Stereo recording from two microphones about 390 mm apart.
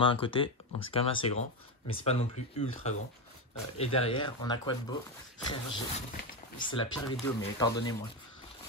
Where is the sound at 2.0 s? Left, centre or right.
Centre.